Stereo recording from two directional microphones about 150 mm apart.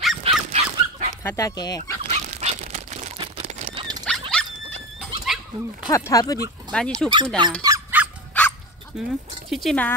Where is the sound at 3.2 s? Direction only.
40° right (ahead or behind).